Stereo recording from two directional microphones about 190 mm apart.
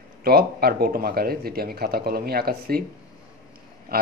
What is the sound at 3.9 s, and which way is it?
Speech, 50° right (ahead or behind).